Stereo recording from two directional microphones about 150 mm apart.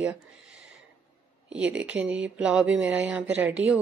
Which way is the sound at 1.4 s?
5° right (ahead or behind).